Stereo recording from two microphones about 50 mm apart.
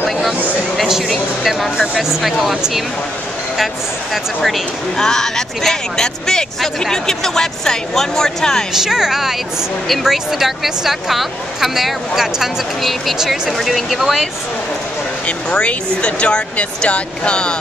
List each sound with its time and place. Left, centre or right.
1.4 s speech: centre
4.1 s speech: centre
8.7 s speech: centre
15.2 s speech: left